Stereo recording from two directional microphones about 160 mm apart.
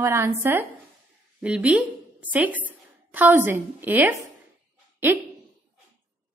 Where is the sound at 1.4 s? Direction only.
5° right (ahead or behind).